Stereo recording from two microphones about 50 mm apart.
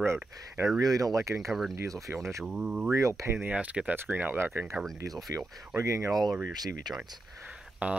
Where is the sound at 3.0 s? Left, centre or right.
Right.